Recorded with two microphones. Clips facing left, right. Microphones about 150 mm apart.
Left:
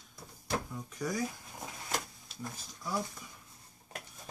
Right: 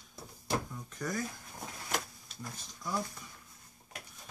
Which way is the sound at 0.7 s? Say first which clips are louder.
Left 1 dB; 10° left (ahead or behind).